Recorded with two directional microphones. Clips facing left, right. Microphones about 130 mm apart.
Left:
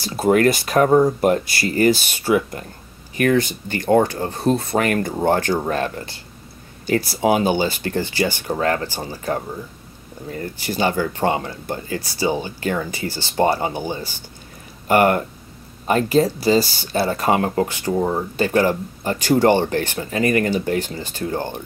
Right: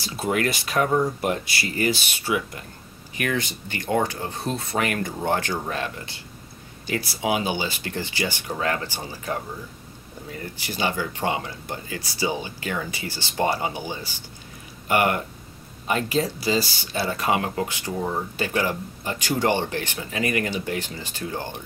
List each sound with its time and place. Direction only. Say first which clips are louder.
0.0 s speech: left 9 dB; 40° left (ahead or behind)